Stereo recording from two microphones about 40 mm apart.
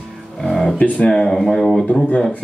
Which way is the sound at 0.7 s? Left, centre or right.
Left.